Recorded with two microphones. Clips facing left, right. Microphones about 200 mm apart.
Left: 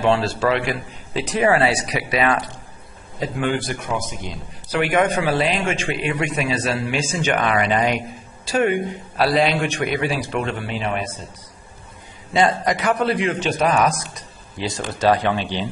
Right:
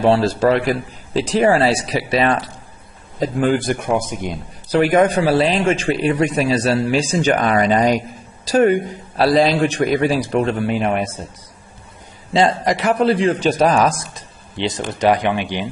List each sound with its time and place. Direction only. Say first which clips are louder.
0.0 s a man's voice: right 4 dB; 35° right (ahead or behind)
1.3 s a man's voice: right 3 dB; 30° right (ahead or behind)
3.6 s a man's voice: right 7 dB; 55° right (ahead or behind)
4.7 s speech: right 5 dB; 35° right (ahead or behind)
12.3 s a man's voice: right 2 dB; 25° right (ahead or behind)